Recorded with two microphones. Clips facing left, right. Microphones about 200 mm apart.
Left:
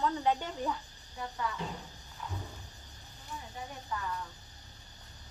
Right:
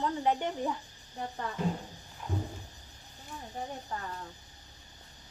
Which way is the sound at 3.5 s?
40° right (ahead or behind).